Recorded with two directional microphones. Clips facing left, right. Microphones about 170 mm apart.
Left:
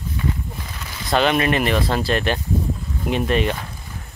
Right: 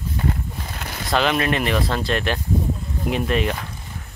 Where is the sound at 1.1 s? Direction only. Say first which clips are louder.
Left 2 dB; centre (ahead or behind).